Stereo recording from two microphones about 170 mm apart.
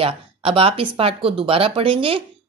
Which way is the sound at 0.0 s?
35° right (ahead or behind).